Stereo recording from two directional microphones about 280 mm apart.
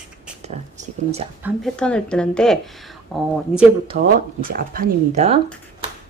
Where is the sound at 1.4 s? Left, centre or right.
Centre.